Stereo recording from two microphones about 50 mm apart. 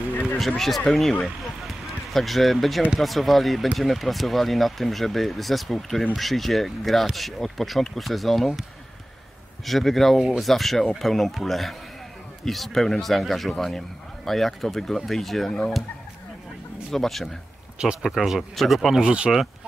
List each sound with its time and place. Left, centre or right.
0.1 s a sound: left
0.4 s speech: centre
1.2 s a sound: centre
3.0 s speech: centre
9.7 s speech: centre
16.9 s speech: centre
17.7 s speech: centre
18.1 s speech: centre